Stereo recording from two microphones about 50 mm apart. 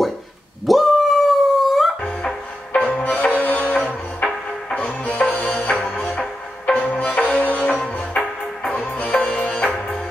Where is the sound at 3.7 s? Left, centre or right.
Left.